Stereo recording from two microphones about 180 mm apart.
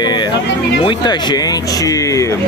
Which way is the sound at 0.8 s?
25° left (ahead or behind).